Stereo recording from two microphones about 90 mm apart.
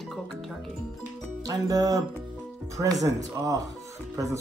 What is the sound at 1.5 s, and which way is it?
Speech, 40° right (ahead or behind).